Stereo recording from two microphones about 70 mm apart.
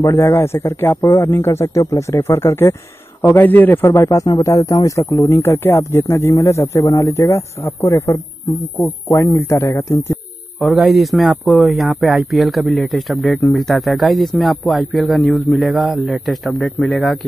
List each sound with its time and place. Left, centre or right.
0.0 s speech: left
0.3 s speech: left
3.3 s speech: left
8.5 s speech: left
9.0 s speech: left
10.6 s speech: centre